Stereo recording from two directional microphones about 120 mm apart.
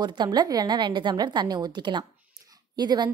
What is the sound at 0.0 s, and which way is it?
A woman's voice, 40° right (ahead or behind).